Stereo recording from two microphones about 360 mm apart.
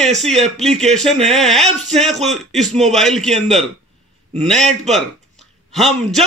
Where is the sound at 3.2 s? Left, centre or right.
Centre.